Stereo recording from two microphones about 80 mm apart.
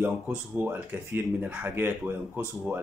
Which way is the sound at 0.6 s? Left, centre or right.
Right.